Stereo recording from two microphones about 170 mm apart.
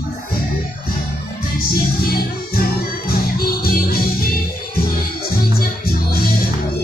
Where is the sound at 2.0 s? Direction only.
60° left (ahead or behind).